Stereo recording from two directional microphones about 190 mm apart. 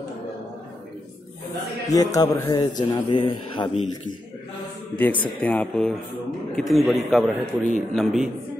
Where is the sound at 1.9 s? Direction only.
20° left (ahead or behind).